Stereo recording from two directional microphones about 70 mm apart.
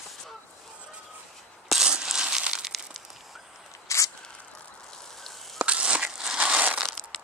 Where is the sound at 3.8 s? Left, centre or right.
Left.